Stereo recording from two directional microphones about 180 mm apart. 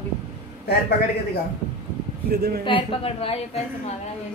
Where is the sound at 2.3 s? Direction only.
60° right (ahead or behind).